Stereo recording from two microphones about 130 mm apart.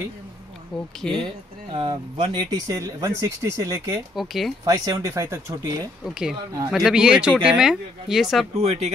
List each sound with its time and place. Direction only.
1.2 s speech: 40° right (ahead or behind)
4.1 s speech: centre (ahead or behind)
4.6 s speech: 25° right (ahead or behind)
6.0 s speech: 5° right (ahead or behind)
8.5 s speech: 55° right (ahead or behind)